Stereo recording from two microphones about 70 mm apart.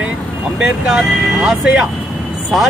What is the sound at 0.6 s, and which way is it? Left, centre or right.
Speech, centre.